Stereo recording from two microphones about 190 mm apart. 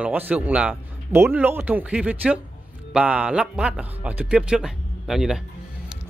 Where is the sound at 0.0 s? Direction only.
10° right (ahead or behind).